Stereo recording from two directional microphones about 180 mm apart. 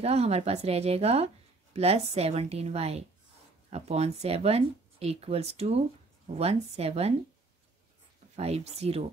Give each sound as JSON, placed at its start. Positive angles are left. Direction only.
{"t": 0.0, "sound": "speech", "side_deg": -35}
{"t": 8.4, "sound": "speech", "side_deg": -35}